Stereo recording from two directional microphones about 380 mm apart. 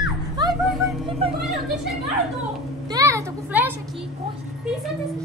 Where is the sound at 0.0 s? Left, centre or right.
Centre.